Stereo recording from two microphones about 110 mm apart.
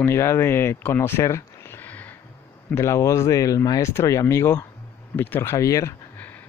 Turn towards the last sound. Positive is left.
turn(degrees=15)  # may be behind; listen again after turning